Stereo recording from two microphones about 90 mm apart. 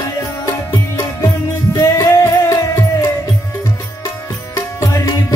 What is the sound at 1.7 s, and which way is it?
Music, 35° left (ahead or behind).